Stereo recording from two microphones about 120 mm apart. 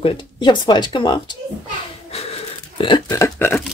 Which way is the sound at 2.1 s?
55° left (ahead or behind).